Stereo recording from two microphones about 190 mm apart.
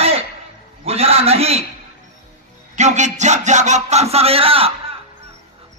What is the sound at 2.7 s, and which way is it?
A man's voice, 40° right (ahead or behind).